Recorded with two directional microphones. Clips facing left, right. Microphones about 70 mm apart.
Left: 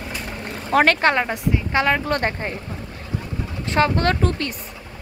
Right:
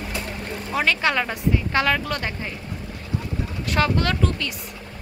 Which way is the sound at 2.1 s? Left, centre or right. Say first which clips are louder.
Left 6 dB; left.